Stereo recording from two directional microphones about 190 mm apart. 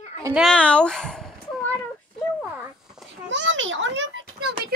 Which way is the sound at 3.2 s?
80° right.